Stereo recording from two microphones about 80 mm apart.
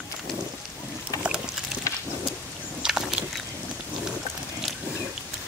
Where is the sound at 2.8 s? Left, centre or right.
Centre.